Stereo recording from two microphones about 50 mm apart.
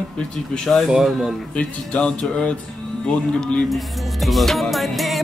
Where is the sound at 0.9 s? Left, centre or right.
Centre.